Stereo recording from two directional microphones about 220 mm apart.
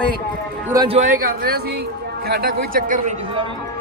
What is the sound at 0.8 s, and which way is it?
Speech, 30° right (ahead or behind).